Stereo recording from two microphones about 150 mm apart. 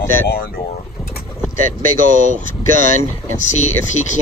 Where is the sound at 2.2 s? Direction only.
60° right (ahead or behind).